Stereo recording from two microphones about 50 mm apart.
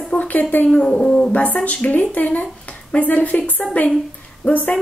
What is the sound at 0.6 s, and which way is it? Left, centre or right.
Speech, centre.